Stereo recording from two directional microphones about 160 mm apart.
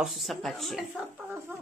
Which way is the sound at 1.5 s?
15° right (ahead or behind).